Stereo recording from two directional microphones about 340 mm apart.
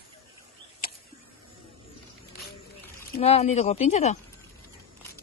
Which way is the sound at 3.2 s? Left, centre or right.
Centre.